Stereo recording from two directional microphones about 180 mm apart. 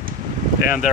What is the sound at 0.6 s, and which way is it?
Speech, 50° left (ahead or behind).